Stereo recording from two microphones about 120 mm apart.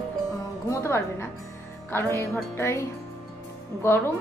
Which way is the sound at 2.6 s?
20° left (ahead or behind).